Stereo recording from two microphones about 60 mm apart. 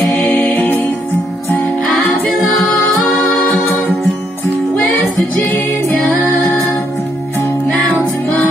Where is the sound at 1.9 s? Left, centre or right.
Centre.